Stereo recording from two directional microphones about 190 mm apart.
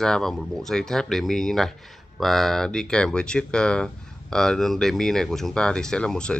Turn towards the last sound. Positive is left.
turn(degrees=5)  # may be behind; listen again after turning